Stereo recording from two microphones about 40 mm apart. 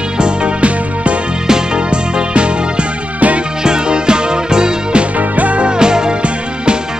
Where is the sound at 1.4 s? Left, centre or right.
Centre; by 3.4 s right.